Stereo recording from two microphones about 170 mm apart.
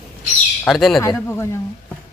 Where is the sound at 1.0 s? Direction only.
15° left (ahead or behind).